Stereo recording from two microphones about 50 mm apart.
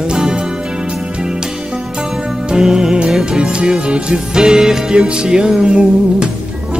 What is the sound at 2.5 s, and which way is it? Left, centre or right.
Music, centre.